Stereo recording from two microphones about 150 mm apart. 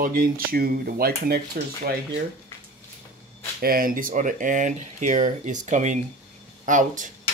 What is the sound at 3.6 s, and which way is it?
Speech, 75° right (ahead or behind).